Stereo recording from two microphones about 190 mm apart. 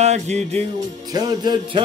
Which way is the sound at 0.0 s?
35° right (ahead or behind).